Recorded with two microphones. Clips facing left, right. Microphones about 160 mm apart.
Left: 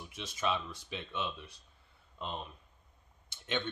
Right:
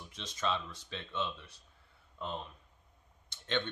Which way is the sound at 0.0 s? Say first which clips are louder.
Left 1 dB; 10° left (ahead or behind).